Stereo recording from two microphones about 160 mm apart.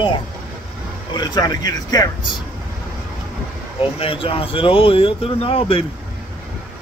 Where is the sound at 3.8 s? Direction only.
35° left (ahead or behind).